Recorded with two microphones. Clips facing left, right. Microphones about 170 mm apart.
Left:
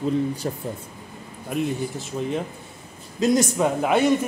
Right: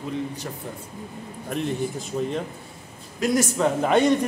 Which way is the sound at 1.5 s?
5° left (ahead or behind).